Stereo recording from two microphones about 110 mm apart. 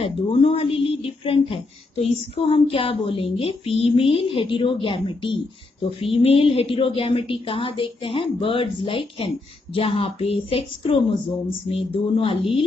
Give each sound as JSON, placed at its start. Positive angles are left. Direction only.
{"t": 0.0, "sound": "speech", "side_deg": 55}
{"t": 5.9, "sound": "speech", "side_deg": 60}